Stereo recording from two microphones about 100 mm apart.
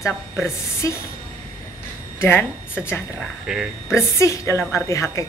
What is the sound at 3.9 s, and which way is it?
A woman's voice, 30° left (ahead or behind).